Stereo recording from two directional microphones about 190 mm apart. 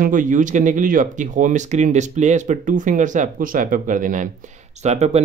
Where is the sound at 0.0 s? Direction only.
45° right (ahead or behind).